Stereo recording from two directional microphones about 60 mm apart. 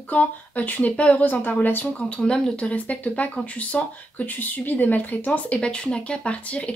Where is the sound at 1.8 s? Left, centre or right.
Centre.